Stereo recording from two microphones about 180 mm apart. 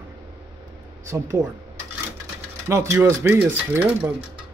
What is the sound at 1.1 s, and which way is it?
Speech, 15° right (ahead or behind).